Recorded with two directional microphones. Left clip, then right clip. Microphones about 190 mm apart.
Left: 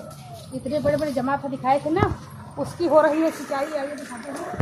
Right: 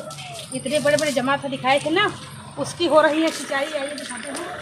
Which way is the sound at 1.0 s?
25° right (ahead or behind).